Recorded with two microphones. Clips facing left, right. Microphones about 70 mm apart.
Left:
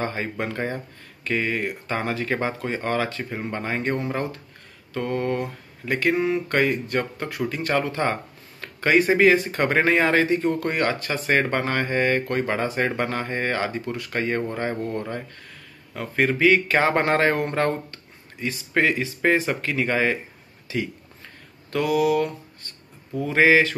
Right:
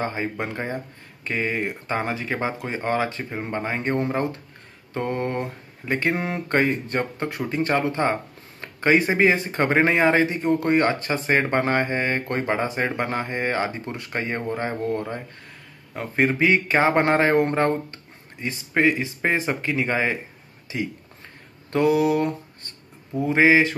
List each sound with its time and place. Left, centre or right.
0.0 s speech: centre
4.9 s mantra: right
6.1 s a sound: right
6.5 s speech: right